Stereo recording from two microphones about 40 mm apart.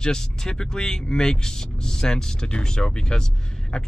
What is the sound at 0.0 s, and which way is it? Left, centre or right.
Speech, centre.